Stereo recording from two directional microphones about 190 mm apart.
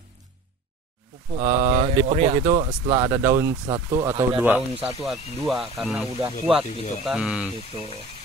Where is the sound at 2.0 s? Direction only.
35° right (ahead or behind).